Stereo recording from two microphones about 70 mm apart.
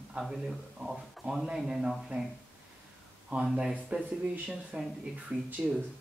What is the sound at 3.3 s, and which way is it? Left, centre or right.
Speech, centre.